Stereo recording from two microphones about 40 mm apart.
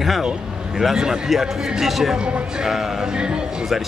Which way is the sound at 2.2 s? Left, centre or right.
Right.